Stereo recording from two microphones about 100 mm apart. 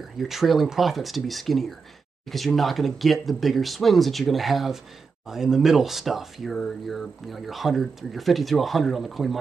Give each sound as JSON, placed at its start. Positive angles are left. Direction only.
{"t": 0.2, "sound": "speech", "side_deg": 0}